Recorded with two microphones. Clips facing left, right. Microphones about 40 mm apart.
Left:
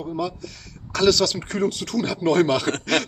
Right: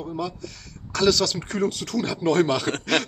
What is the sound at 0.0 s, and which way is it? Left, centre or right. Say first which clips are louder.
Speech: left 2 dB; centre.